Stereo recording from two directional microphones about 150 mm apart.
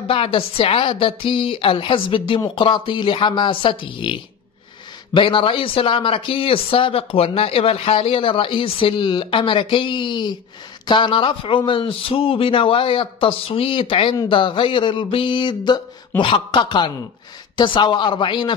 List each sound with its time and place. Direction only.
0.1 s speech: 35° left (ahead or behind)